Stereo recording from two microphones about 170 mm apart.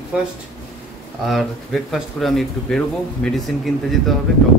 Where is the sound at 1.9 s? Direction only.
Centre (ahead or behind).